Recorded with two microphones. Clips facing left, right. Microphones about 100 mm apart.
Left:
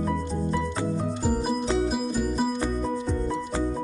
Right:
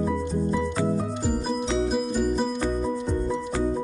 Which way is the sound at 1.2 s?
5° left (ahead or behind).